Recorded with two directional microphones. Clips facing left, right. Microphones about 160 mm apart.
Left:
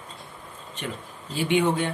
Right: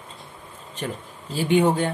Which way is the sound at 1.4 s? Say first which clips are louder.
Right 3 dB; 35° right (ahead or behind).